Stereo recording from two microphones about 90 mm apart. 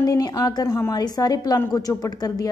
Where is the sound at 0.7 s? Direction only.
30° left (ahead or behind).